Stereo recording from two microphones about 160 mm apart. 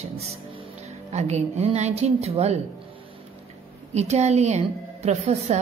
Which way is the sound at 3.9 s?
45° right (ahead or behind).